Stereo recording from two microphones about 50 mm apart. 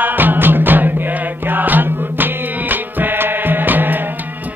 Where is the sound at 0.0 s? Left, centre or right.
Right.